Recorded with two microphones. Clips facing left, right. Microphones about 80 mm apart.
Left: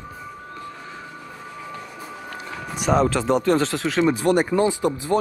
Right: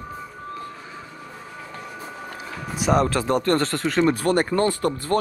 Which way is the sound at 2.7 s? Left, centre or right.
Centre.